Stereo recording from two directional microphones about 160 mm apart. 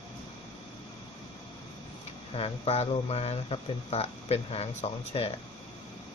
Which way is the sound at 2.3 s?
35° left (ahead or behind).